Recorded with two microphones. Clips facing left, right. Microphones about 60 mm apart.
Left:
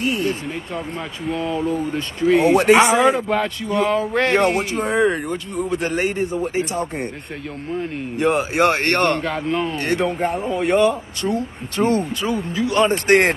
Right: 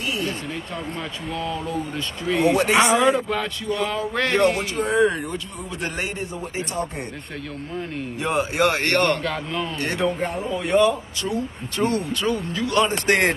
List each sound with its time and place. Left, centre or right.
1.2 s a man's voice: centre
8.2 s a man's voice: centre
11.8 s a man's voice: centre